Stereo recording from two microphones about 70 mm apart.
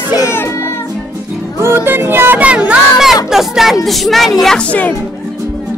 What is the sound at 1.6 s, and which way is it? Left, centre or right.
Music, right.